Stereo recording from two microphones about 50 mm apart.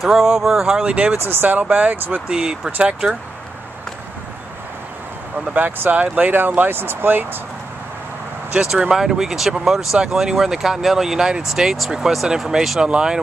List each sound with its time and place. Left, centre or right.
0.0 s speech: centre
0.8 s speech: right
1.2 s speech: right
1.6 s speech: right
2.0 s speech: right
2.2 s speech: centre
6.1 s speech: right
8.6 s speech: centre